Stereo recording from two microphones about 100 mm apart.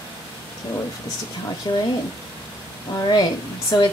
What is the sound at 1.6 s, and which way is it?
Speech, 45° left (ahead or behind).